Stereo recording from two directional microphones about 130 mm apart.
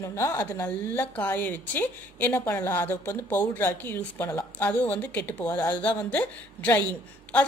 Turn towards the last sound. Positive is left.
turn(degrees=10)  # may be behind; listen again after turning